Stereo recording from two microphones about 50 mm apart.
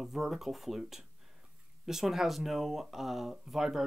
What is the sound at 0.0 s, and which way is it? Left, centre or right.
Speech, centre.